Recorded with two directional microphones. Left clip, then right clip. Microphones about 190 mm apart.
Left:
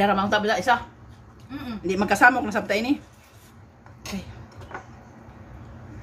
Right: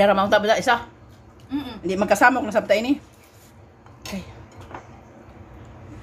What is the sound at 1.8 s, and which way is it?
A woman's voice, 10° right (ahead or behind).